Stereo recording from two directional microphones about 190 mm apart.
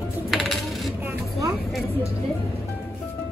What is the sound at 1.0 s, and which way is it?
Speech, 15° right (ahead or behind).